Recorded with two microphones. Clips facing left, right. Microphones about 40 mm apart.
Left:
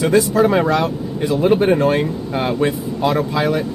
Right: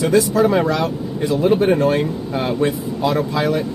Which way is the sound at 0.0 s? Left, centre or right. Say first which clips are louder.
Left 1 dB; left.